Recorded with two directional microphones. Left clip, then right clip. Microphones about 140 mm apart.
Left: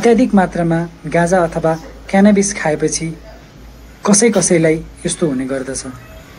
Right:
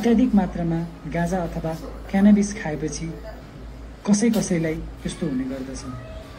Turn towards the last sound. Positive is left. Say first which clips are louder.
# left 9 dB
turn(degrees=55)  # may be behind; listen again after turning